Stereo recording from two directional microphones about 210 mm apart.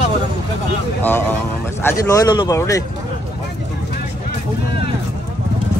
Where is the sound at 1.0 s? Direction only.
10° left (ahead or behind).